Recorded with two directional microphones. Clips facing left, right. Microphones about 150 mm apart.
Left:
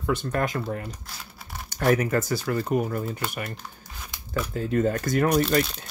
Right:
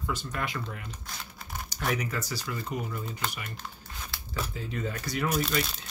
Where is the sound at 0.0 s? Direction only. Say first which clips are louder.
Left 8 dB; 55° left (ahead or behind).